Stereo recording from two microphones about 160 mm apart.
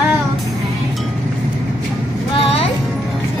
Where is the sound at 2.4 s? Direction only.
40° left (ahead or behind).